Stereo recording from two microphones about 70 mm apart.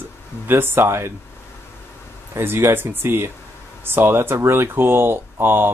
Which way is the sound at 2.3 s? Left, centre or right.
Right.